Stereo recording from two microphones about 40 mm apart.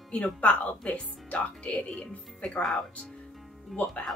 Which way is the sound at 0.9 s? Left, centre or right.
Left.